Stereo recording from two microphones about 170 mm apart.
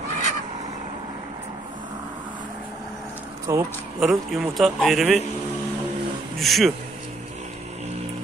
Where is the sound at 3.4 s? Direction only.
15° right (ahead or behind).